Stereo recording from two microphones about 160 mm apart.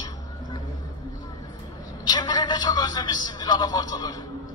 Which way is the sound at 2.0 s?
25° left (ahead or behind).